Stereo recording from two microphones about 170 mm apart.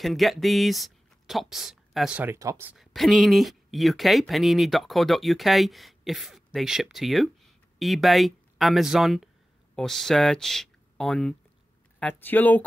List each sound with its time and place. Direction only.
0.0 s speech: centre (ahead or behind)
2.3 s speech: 15° right (ahead or behind)
2.8 s speech: centre (ahead or behind)